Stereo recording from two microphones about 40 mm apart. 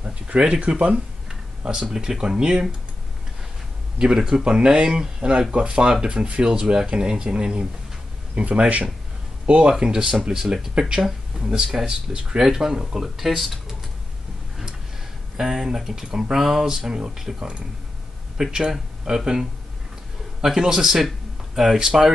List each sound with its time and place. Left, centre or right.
0.4 s speech: right
1.6 s speech: centre
4.0 s speech: centre; by 8.8 s right
9.5 s speech: right; by 11.4 s centre
11.4 s speech: right
12.4 s speech: centre
15.3 s speech: centre
18.4 s speech: centre
20.4 s speech: centre